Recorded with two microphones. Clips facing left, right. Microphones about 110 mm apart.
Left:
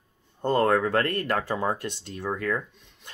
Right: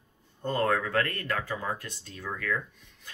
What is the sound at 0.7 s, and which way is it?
Speech, 35° left (ahead or behind).